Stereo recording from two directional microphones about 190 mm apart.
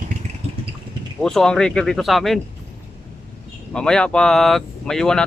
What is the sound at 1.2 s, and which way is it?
Speech, centre (ahead or behind).